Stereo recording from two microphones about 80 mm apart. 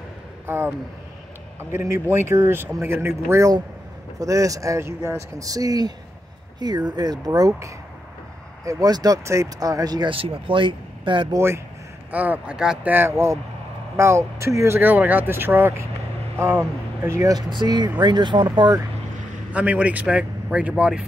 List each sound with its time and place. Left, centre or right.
0.5 s speech: right
4.2 s speech: right
10.0 s speech: right
11.3 s speech: right
12.1 s speech: centre
12.9 s speech: right
14.8 s speech: right
17.6 s speech: right
19.5 s a man's voice: centre